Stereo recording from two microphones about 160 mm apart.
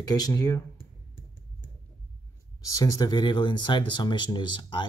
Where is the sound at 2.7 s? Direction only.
20° left (ahead or behind).